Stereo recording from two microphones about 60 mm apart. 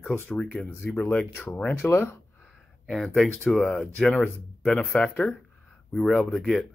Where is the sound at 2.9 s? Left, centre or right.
Centre.